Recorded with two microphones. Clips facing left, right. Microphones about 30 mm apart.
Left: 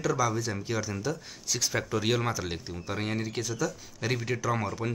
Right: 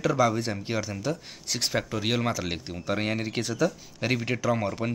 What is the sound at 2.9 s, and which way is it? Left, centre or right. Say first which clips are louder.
Speech: right 4 dB; right.